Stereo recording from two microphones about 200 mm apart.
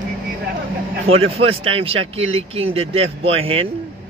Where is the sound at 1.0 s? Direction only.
30° right (ahead or behind).